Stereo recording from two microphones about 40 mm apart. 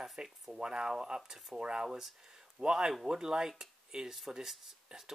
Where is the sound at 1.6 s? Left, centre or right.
Right.